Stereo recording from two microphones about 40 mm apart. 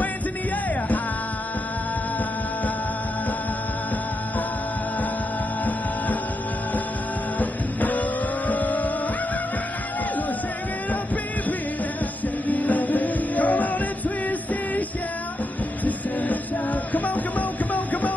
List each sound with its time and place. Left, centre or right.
7.3 s music: left
8.5 s vehicle: left
12.4 s music: left
15.8 s music: left